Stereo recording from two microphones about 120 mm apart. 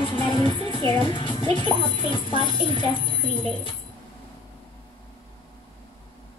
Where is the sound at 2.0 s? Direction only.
45° left (ahead or behind).